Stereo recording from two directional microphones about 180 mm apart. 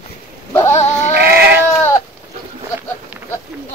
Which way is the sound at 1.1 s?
60° right (ahead or behind).